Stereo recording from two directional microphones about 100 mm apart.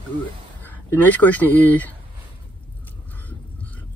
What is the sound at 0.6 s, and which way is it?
Speech, 20° left (ahead or behind).